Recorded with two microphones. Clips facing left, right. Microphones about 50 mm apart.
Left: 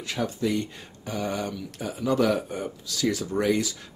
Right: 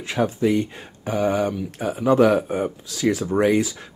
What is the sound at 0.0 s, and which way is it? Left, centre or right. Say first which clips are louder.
Speech: right 7 dB; right.